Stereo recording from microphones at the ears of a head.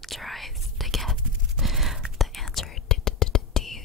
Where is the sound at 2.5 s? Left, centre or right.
Left.